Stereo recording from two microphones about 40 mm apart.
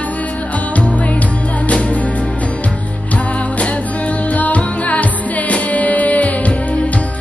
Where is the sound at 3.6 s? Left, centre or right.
Left.